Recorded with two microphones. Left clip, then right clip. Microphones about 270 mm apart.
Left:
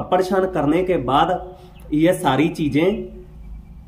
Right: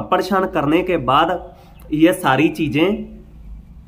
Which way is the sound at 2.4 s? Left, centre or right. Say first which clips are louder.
Right 3 dB; right.